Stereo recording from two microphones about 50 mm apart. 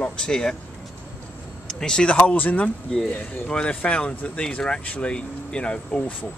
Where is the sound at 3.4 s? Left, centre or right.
Centre.